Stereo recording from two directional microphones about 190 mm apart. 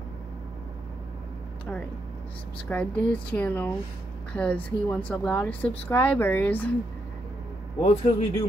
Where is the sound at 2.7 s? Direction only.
5° left (ahead or behind).